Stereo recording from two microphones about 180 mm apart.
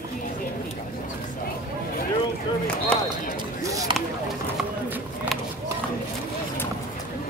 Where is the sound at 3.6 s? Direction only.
20° right (ahead or behind).